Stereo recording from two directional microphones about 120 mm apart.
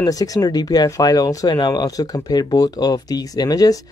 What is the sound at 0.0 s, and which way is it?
Speech, 30° left (ahead or behind).